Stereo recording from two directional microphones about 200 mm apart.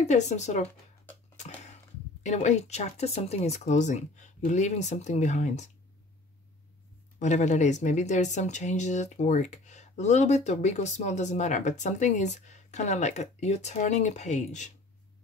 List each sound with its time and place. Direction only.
0.0 s speech: 35° left (ahead or behind)
2.2 s speech: 35° left (ahead or behind)
7.2 s speech: 35° left (ahead or behind)